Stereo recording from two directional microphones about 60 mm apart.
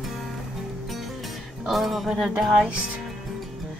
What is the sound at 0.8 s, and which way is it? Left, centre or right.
Music, centre.